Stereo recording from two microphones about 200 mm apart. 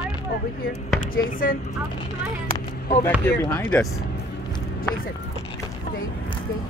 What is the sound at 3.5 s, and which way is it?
Speech, 5° left (ahead or behind).